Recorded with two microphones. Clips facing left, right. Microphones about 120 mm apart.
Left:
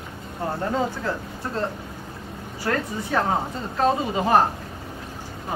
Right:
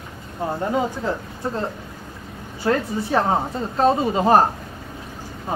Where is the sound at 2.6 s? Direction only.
25° right (ahead or behind).